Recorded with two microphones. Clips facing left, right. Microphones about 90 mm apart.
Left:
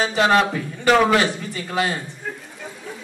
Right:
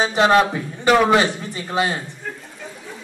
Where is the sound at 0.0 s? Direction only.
20° right (ahead or behind).